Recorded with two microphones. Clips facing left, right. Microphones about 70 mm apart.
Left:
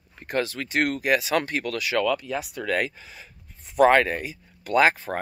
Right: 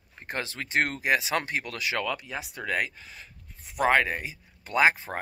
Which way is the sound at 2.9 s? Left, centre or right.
Centre.